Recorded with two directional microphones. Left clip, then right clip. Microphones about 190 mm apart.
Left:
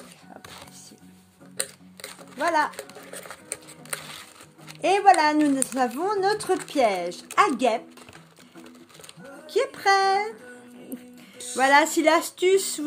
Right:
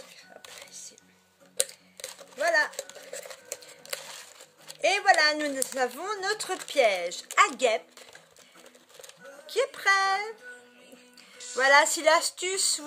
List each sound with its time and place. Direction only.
2.3 s speech: 55° right (ahead or behind)
4.8 s speech: 50° right (ahead or behind)
9.5 s speech: 50° right (ahead or behind)
11.5 s speech: 50° right (ahead or behind)